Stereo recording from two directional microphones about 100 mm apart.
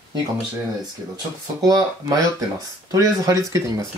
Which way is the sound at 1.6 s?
40° right (ahead or behind).